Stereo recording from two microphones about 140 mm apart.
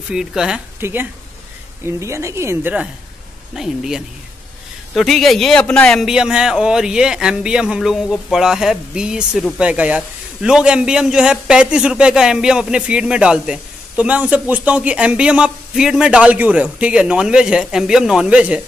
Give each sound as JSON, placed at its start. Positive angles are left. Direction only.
{"t": 0.1, "sound": "a man's voice", "side_deg": -5}
{"t": 0.7, "sound": "a man's voice", "side_deg": -15}